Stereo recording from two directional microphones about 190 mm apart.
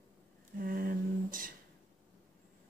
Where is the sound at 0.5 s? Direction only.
50° right (ahead or behind).